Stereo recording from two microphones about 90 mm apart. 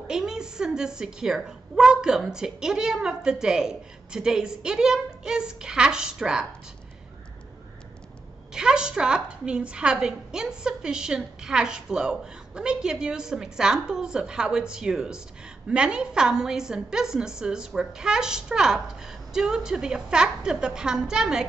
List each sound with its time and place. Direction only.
0.1 s a woman's voice: 5° right (ahead or behind)
8.5 s a woman's voice: 10° right (ahead or behind)